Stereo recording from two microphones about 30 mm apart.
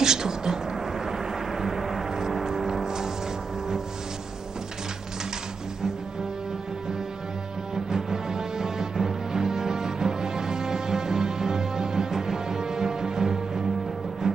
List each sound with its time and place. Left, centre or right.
0.0 s a sound: right
1.1 s gong: centre
7.7 s music: centre